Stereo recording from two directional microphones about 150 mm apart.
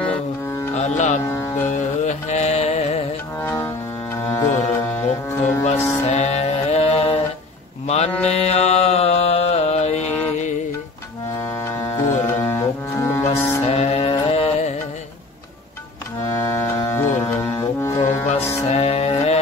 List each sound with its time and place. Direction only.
0.0 s music: 10° left (ahead or behind)
0.7 s music: 50° left (ahead or behind)
1.2 s music: 15° left (ahead or behind)
1.7 s music: 50° left (ahead or behind)
3.3 s music: 15° left (ahead or behind)
6.0 s music: 45° left (ahead or behind)
7.8 s mantra: 45° left (ahead or behind)
11.3 s music: 20° left (ahead or behind)
13.7 s music: 40° left (ahead or behind)
16.3 s music: 20° left (ahead or behind)
18.7 s music: 45° left (ahead or behind)